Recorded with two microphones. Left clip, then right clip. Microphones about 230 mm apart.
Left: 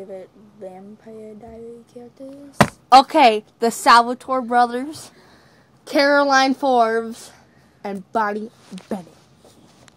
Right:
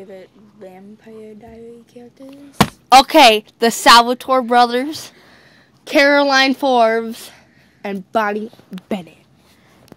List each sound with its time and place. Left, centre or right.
0.1 s speech: centre
2.9 s a woman's voice: right